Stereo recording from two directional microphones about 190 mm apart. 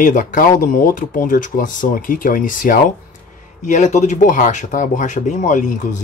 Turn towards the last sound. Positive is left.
turn(degrees=40)  # may be behind; listen again after turning